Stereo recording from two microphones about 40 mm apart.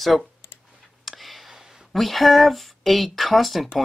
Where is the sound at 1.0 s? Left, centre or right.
Centre.